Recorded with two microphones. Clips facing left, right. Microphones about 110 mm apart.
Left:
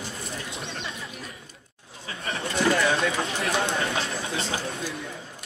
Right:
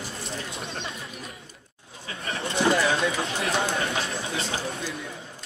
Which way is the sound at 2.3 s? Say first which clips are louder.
Right 1 dB; 25° right (ahead or behind).